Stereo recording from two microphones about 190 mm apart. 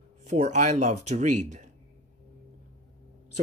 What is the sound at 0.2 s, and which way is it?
Speech, 35° right (ahead or behind).